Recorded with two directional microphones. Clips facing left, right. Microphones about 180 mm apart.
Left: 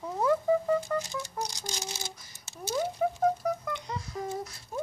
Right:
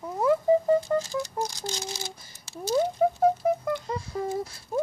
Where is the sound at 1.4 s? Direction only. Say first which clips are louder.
Right 3 dB; 30° right (ahead or behind).